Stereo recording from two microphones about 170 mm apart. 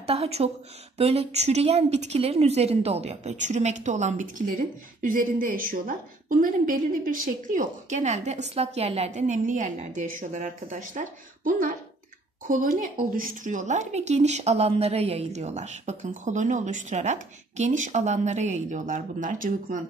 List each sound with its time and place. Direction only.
0.0 s a woman's voice: 35° right (ahead or behind)